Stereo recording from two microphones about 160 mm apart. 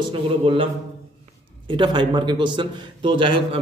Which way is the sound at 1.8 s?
30° right (ahead or behind).